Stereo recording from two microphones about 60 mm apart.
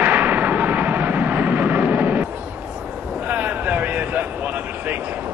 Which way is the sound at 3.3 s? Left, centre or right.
Right.